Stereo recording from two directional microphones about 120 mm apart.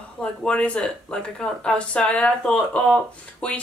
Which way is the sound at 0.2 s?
10° left (ahead or behind).